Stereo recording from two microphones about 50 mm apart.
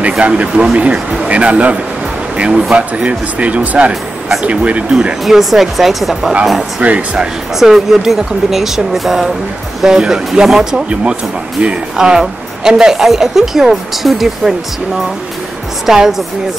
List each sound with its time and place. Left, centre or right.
0.2 s speech: right
5.2 s speech: centre
6.8 s speech: right
7.5 s a woman's voice: centre
15.8 s a woman's voice: centre